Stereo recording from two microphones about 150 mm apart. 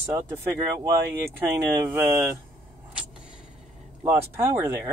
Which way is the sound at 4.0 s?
15° right (ahead or behind).